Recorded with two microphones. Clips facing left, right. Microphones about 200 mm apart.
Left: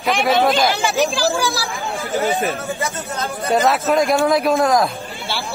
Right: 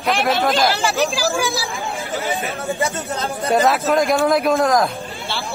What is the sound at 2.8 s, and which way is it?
Speech, 30° right (ahead or behind).